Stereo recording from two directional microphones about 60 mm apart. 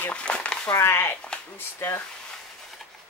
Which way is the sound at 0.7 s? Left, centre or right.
Left.